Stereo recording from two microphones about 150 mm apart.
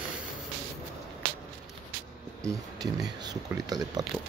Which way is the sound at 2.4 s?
20° right (ahead or behind).